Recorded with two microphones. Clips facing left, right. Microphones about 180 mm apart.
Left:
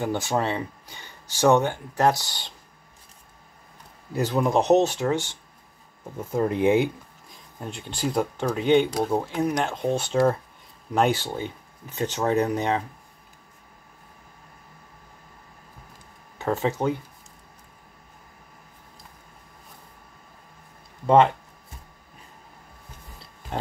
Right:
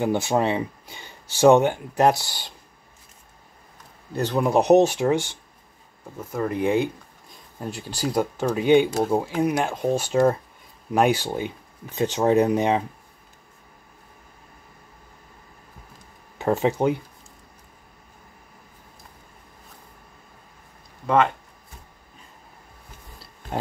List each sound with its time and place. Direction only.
0.0 s speech: 15° right (ahead or behind)
4.1 s speech: 5° left (ahead or behind)
4.5 s speech: 10° right (ahead or behind)
6.1 s speech: 25° left (ahead or behind)
7.6 s speech: 5° right (ahead or behind)
16.3 s speech: 15° right (ahead or behind)